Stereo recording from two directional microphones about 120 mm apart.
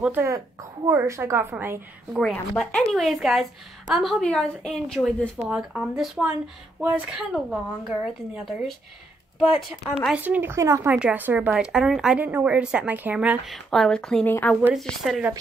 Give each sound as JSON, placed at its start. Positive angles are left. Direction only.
{"t": 0.8, "sound": "a woman's voice", "side_deg": -25}
{"t": 2.1, "sound": "a woman's voice", "side_deg": 0}
{"t": 5.5, "sound": "a woman's voice", "side_deg": -5}
{"t": 10.1, "sound": "a woman's voice", "side_deg": -15}
{"t": 10.9, "sound": "a woman's voice", "side_deg": -10}
{"t": 13.5, "sound": "a woman's voice", "side_deg": 5}
{"t": 14.7, "sound": "a woman's voice", "side_deg": 0}